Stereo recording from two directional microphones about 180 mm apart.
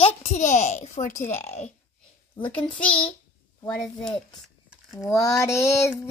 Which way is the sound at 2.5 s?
5° left (ahead or behind).